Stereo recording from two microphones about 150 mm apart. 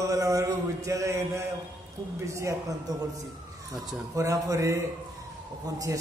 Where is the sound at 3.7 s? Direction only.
20° right (ahead or behind).